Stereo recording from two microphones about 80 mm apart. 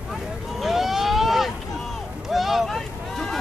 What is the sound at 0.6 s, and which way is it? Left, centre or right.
Speech, centre.